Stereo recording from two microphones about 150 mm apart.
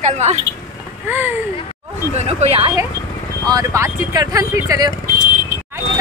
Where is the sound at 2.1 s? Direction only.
45° right (ahead or behind).